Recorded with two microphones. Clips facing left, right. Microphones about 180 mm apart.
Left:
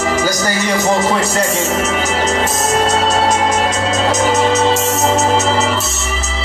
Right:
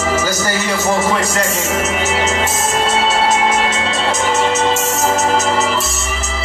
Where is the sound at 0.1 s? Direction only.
15° left (ahead or behind).